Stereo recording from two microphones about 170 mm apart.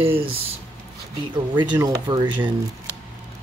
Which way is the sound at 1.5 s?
25° right (ahead or behind).